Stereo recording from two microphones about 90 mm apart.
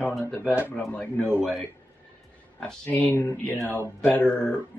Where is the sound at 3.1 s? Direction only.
30° left (ahead or behind).